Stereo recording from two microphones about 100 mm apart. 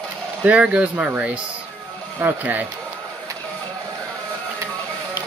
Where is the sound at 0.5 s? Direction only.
10° right (ahead or behind).